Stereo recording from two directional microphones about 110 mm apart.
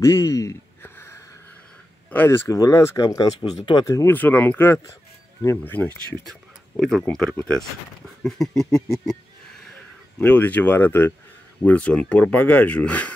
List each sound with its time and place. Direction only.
0.0 s a sound: 25° left (ahead or behind)
2.0 s speech: 20° left (ahead or behind); by 3.8 s 40° left (ahead or behind)
3.8 s speech: 30° left (ahead or behind)
4.1 s speech: 15° left (ahead or behind)
6.8 s a sound: 5° left (ahead or behind)
10.1 s speech: 15° left (ahead or behind)